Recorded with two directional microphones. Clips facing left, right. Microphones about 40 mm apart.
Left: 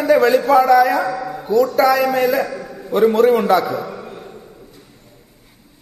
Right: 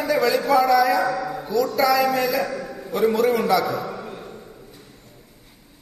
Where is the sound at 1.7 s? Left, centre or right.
Left.